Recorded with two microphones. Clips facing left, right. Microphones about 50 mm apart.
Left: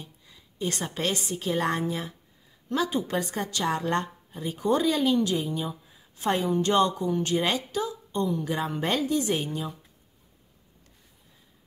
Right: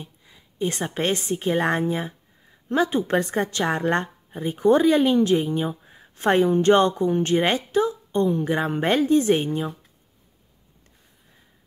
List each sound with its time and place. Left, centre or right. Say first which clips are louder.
0.0 s a woman's voice: right 4 dB; right